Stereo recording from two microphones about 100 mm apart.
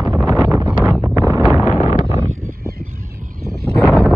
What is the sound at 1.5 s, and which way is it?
Wind noise, 85° left.